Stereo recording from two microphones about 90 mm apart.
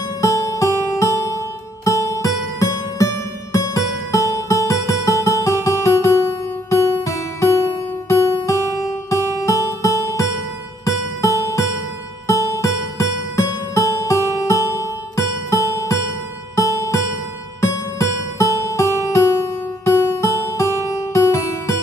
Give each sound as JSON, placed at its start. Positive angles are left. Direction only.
{"t": 0.2, "sound": "music", "side_deg": 35}